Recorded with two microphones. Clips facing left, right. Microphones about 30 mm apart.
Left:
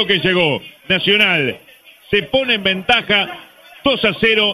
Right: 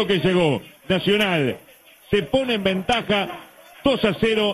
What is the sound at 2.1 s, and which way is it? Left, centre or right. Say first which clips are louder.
A man's voice: left 4 dB; left.